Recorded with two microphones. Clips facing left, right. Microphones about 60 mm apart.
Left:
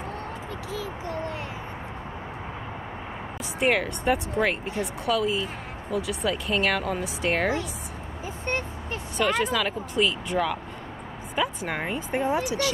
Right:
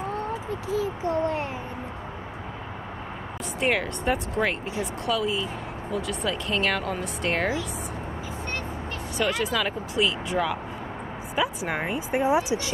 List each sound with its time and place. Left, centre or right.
0.7 s speech: right
3.5 s speech: centre
9.2 s speech: centre; by 12.7 s right